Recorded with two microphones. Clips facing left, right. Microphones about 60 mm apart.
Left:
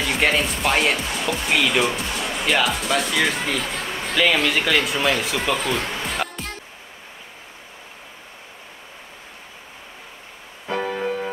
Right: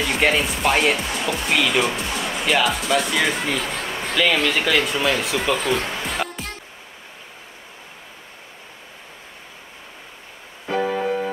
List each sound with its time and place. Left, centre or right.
0.0 s speech: centre
10.7 s music: centre